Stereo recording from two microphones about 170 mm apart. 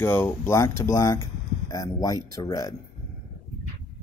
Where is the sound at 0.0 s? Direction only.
15° left (ahead or behind).